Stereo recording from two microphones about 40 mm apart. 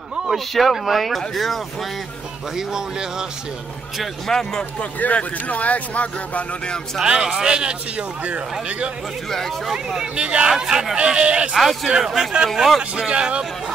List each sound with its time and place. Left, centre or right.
0.3 s speech: centre
2.5 s speech: centre
4.3 s speech: centre
4.9 s speech: left
7.1 s speech: centre
8.2 s speech: right
9.7 s speech: centre
10.1 s speech: right
10.5 s speech: centre
11.0 s speech: right
11.5 s speech: centre
12.5 s speech: centre
13.1 s speech: right